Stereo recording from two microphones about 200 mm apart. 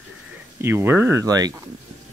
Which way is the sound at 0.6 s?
10° right (ahead or behind).